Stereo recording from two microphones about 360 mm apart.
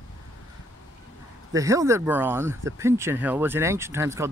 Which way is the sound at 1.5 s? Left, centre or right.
Centre.